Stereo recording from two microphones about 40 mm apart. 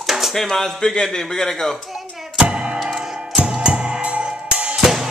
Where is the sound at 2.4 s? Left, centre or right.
Right.